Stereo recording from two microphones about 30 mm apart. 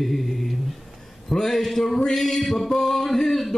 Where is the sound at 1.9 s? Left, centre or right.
Centre.